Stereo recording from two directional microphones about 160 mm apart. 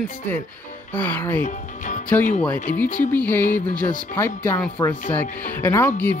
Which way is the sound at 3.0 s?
10° left (ahead or behind).